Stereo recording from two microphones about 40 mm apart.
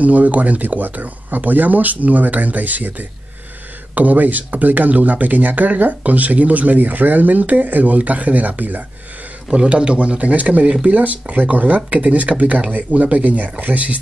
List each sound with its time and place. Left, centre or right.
0.0 s speech: right
9.5 s speech: right
10.6 s speech: right
10.9 s speech: right